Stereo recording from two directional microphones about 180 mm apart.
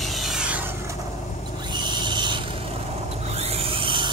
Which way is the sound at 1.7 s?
25° right (ahead or behind).